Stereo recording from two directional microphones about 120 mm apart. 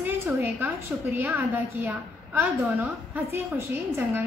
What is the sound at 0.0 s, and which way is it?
A woman's voice, 15° right (ahead or behind).